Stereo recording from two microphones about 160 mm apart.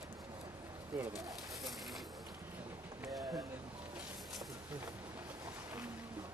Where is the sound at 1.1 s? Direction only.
Centre (ahead or behind).